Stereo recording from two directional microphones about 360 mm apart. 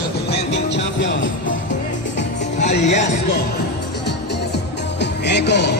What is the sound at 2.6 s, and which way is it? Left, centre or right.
Speech, centre.